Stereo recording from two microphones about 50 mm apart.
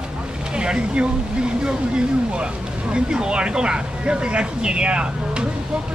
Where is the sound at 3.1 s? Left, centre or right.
Centre.